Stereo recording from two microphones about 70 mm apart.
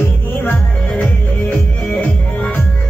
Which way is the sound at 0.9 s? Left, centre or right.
Centre.